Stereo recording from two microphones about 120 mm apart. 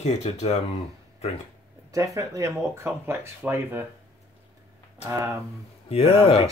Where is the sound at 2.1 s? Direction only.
25° right (ahead or behind).